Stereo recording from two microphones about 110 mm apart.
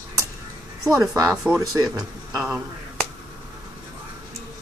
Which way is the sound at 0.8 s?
30° right (ahead or behind).